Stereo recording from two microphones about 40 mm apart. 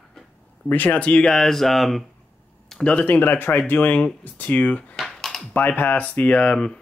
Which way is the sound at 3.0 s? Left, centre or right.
Left.